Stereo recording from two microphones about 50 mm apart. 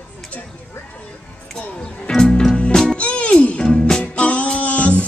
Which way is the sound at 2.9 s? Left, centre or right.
Left.